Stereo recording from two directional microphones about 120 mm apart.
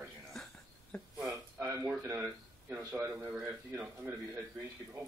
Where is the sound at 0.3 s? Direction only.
Centre (ahead or behind).